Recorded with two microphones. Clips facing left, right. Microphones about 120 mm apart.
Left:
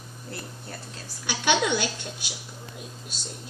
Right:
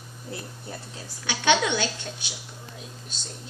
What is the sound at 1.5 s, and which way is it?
Speech, 10° left (ahead or behind).